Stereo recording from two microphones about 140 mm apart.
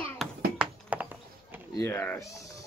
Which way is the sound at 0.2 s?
Centre (ahead or behind).